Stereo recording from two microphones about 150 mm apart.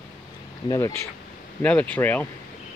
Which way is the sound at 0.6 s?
20° left (ahead or behind).